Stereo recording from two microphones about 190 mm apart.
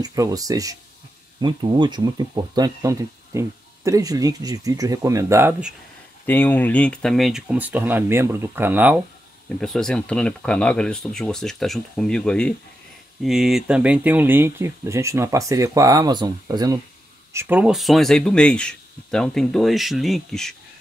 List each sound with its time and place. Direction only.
0.0 s speech: 20° right (ahead or behind)
6.2 s speech: 10° left (ahead or behind); by 9.0 s 10° right (ahead or behind)
9.6 s speech: 5° left (ahead or behind)